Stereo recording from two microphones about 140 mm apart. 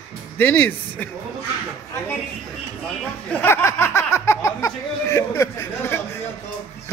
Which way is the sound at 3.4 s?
15° left (ahead or behind).